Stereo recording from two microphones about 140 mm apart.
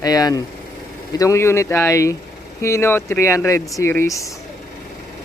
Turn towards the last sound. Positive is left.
turn(degrees=20)  # may be behind; listen again after turning